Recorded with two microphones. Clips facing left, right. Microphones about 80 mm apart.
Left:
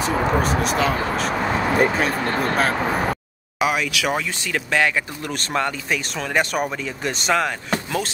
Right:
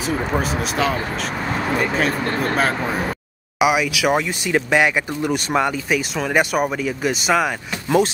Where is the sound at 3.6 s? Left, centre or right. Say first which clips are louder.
Right 4 dB; centre.